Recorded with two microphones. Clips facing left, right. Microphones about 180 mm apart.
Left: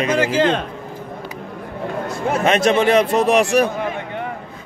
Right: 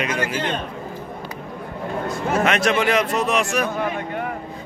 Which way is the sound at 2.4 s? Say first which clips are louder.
Left 5 dB; 25° left (ahead or behind).